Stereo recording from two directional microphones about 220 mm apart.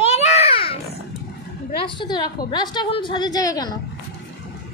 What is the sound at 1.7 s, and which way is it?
A woman's voice, 20° left (ahead or behind).